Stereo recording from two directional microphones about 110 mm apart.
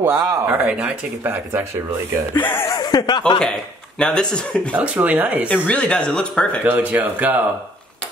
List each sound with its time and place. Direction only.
0.0 s speech: 20° right (ahead or behind)
0.7 s speech: 10° right (ahead or behind)
2.3 s speech: 20° left (ahead or behind)
2.8 s speech: 40° left (ahead or behind)
4.0 s speech: 5° left (ahead or behind)
4.7 s speech: 15° right (ahead or behind)
5.5 s speech: 10° left (ahead or behind)
6.6 s speech: 15° right (ahead or behind)